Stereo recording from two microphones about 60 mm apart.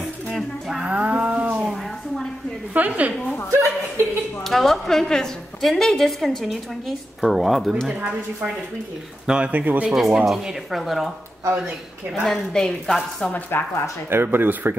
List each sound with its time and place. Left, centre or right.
0.3 s a sound: centre
0.7 s music: right
1.5 s a sound: centre
2.7 s speech: right
3.5 s speech: right
4.4 s a woman's voice: centre
7.9 s speech: right
9.9 s a woman's voice: centre
12.3 s speech: centre
13.3 s speech: left
14.0 s speech: right